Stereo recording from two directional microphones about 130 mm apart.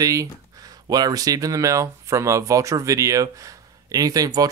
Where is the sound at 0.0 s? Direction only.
25° right (ahead or behind).